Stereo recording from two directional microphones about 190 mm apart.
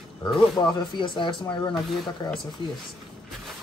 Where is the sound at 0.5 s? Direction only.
20° left (ahead or behind).